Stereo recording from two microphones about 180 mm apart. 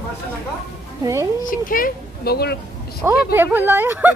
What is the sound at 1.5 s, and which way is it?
Speech, 50° left (ahead or behind).